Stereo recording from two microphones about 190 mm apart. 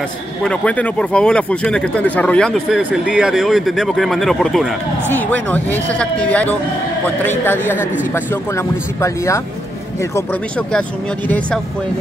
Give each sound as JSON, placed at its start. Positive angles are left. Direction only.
{"t": 0.4, "sound": "a man's voice", "side_deg": 5}
{"t": 10.7, "sound": "speech", "side_deg": 5}